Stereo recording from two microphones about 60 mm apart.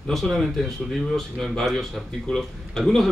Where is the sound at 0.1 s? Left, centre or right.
Centre.